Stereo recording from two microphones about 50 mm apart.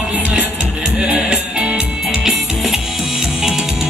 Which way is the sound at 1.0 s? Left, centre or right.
Right.